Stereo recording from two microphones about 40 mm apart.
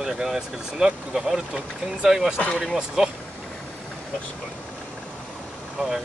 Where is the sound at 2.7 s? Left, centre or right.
Centre.